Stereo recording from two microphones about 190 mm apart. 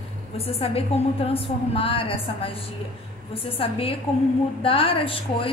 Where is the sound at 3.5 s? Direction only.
30° left (ahead or behind).